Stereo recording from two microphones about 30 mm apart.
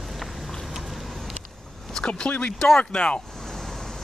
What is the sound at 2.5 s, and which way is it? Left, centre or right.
Speech, centre.